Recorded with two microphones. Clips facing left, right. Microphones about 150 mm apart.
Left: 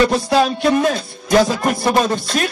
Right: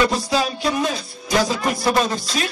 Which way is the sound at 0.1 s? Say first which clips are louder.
Left 6 dB; 60° left (ahead or behind).